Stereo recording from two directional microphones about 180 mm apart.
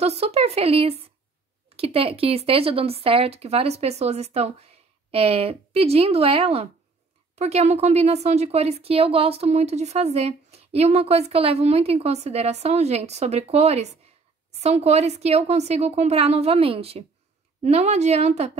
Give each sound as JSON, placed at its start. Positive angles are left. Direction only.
{"t": 0.0, "sound": "speech", "side_deg": -35}